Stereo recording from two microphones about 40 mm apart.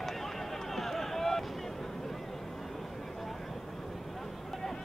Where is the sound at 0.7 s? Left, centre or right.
Centre.